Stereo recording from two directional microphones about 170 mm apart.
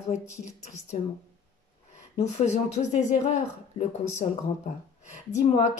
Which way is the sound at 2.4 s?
45° left (ahead or behind).